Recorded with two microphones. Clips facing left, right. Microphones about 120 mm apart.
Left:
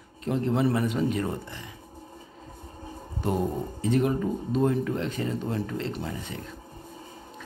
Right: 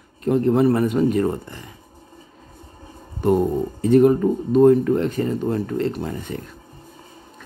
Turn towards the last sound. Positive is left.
turn(degrees=-50)  # may be behind; listen again after turning